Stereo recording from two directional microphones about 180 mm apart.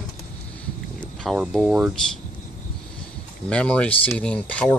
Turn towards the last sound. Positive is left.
turn(degrees=5)  # may be behind; listen again after turning